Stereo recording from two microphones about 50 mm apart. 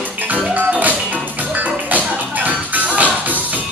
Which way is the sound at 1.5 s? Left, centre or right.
Right.